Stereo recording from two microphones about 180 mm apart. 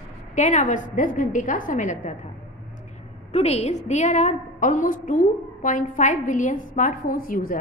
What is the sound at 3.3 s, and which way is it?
A woman's voice, 35° left (ahead or behind).